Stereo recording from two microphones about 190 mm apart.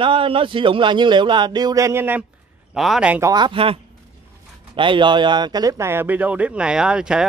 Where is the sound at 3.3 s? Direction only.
25° right (ahead or behind).